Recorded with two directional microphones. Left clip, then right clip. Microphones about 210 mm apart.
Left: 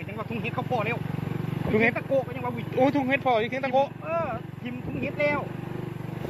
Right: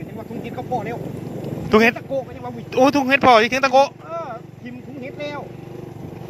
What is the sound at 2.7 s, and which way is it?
Speech, 35° right (ahead or behind).